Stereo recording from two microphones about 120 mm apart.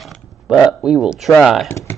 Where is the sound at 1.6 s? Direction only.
20° left (ahead or behind).